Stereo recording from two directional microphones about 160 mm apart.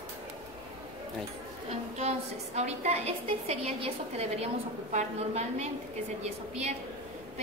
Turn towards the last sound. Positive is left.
turn(degrees=-45)  # may be behind; listen again after turning